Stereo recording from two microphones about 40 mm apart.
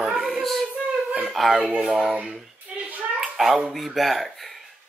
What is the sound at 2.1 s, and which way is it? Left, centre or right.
Speech, right.